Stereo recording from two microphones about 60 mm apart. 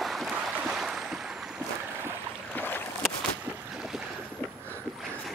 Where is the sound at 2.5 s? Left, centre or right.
Left.